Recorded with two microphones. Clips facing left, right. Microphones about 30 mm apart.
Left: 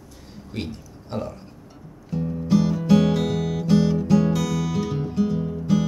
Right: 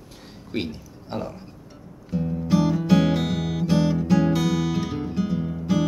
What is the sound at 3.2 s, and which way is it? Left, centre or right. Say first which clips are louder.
Music: left 2 dB; right.